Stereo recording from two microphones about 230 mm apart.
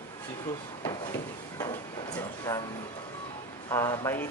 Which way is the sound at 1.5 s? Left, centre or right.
Centre.